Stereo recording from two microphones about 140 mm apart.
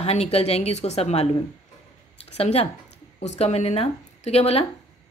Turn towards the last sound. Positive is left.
turn(degrees=45)  # may be behind; listen again after turning